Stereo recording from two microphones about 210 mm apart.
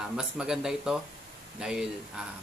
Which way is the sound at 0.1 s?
5° right (ahead or behind).